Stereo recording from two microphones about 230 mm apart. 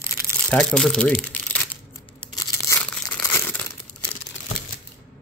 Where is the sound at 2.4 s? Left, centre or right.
Centre.